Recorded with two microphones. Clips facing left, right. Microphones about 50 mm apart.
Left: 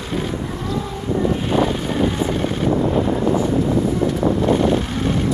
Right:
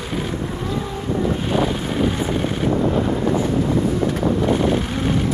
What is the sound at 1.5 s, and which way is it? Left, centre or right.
Vehicle, centre.